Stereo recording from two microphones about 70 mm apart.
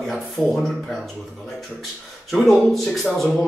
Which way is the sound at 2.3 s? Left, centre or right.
Centre.